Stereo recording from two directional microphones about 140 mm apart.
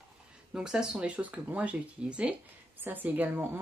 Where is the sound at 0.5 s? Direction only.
5° right (ahead or behind).